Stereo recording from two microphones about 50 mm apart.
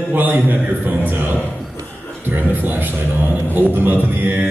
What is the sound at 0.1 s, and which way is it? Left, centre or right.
Music, right.